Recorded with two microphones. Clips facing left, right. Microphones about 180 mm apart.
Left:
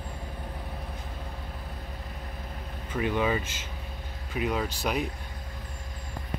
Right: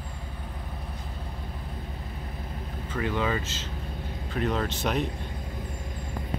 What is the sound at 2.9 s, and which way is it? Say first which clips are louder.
Speech: left 1 dB; 15° left (ahead or behind).